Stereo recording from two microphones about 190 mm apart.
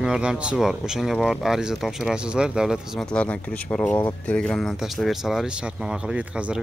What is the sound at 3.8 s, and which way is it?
A man's voice, 10° left (ahead or behind).